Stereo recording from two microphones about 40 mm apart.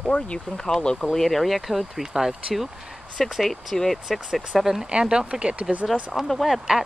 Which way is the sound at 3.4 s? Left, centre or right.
Centre.